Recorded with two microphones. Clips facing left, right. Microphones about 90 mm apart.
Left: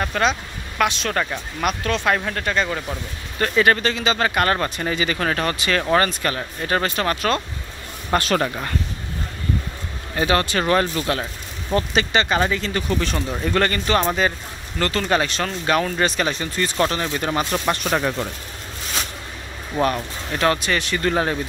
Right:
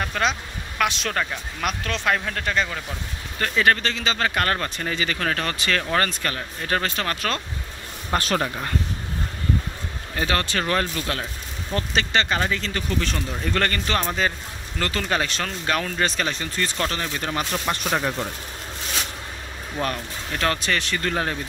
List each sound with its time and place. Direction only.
0.0 s speech: centre (ahead or behind)
8.1 s speech: 85° left
10.1 s speech: 15° left (ahead or behind)
14.8 s speech: centre (ahead or behind); by 17.3 s 15° left (ahead or behind)
19.8 s speech: 10° left (ahead or behind)